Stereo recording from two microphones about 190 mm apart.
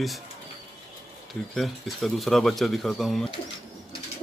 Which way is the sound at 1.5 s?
Centre (ahead or behind).